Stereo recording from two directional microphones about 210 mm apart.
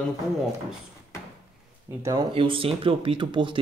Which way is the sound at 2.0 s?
20° right (ahead or behind).